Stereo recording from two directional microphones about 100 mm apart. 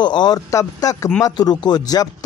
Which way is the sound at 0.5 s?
35° left (ahead or behind).